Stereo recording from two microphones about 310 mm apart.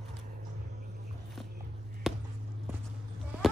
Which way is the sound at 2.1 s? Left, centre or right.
Centre.